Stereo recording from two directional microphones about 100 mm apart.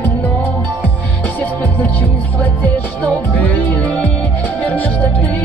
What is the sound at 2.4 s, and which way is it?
Music, 15° left (ahead or behind).